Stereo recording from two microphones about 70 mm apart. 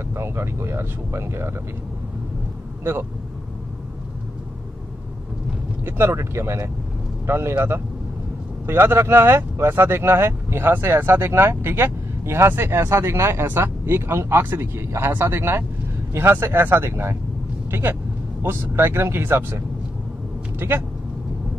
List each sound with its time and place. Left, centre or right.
0.1 s speech: right
2.8 s speech: right
5.9 s speech: right